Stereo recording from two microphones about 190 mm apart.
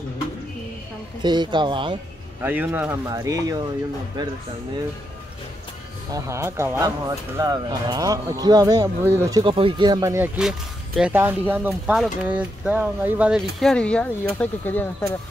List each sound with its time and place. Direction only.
1.2 s speech: 25° right (ahead or behind)
2.4 s speech: 10° right (ahead or behind)
6.1 s speech: 15° right (ahead or behind); by 15.1 s 10° left (ahead or behind)